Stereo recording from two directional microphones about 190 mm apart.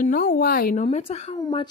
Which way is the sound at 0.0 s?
45° left (ahead or behind).